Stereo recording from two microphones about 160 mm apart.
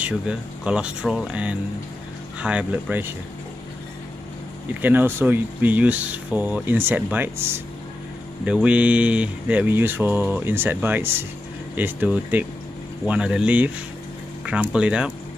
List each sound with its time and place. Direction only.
0.0 s speech: 5° right (ahead or behind)
4.8 s speech: 10° right (ahead or behind)